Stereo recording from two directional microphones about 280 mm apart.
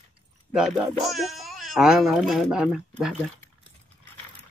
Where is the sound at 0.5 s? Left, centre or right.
Centre.